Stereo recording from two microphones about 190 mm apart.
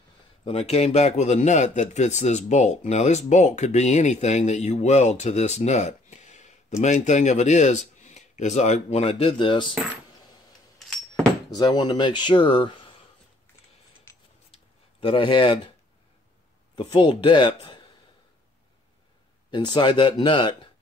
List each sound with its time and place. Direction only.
0.5 s speech: 30° left (ahead or behind)
11.5 s speech: 20° left (ahead or behind)
14.5 s a sound: 30° left (ahead or behind)
16.9 s speech: 25° left (ahead or behind)
19.5 s speech: 25° left (ahead or behind)